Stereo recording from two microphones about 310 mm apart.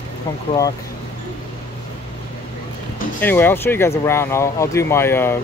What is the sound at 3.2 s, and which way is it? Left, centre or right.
Speech, centre.